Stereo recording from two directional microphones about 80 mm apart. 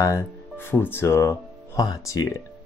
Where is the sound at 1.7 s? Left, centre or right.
Left.